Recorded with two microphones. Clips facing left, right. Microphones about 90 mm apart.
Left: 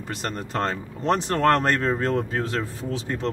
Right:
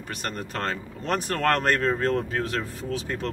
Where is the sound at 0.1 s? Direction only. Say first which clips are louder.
Left 3 dB; 25° left (ahead or behind).